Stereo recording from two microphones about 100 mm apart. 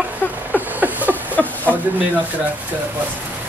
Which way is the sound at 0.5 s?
15° right (ahead or behind).